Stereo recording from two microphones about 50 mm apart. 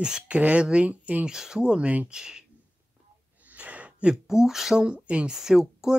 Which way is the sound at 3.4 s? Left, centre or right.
Right.